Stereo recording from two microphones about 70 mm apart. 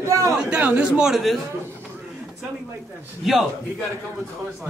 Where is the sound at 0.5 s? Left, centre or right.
Right.